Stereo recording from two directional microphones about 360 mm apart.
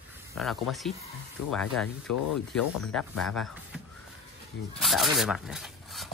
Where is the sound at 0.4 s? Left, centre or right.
Centre.